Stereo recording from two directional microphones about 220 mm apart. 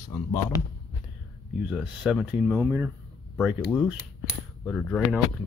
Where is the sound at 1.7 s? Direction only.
5° right (ahead or behind).